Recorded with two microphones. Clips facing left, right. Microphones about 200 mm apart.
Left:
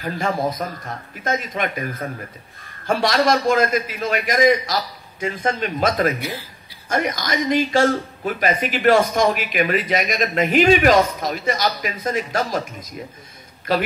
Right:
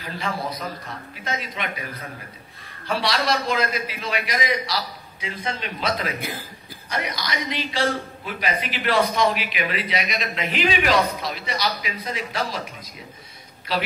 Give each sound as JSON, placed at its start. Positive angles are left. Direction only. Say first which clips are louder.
{"t": 0.0, "sound": "a man's voice", "louder": "left 7 dB", "side_deg": 45}
{"t": 6.1, "sound": "speech", "louder": "left 3 dB", "side_deg": -50}
{"t": 6.9, "sound": "a man's voice", "louder": "left 6 dB", "side_deg": 45}